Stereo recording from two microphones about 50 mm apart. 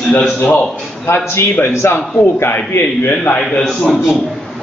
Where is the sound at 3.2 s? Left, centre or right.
Left.